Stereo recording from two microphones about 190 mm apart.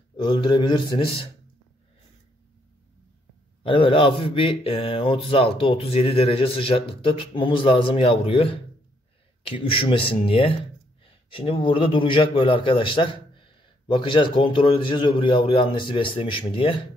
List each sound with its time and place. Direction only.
0.1 s a man's voice: 25° left (ahead or behind)
3.6 s a man's voice: 25° left (ahead or behind)